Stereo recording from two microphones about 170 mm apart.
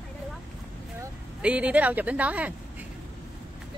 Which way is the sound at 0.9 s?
10° right (ahead or behind).